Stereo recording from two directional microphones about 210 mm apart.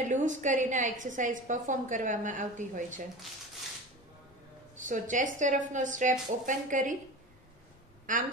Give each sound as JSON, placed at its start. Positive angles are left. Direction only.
{"t": 0.0, "sound": "a woman's voice", "side_deg": -35}
{"t": 4.8, "sound": "a woman's voice", "side_deg": -35}
{"t": 8.1, "sound": "a woman's voice", "side_deg": -40}